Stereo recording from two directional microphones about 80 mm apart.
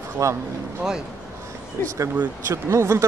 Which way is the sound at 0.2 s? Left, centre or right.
Right.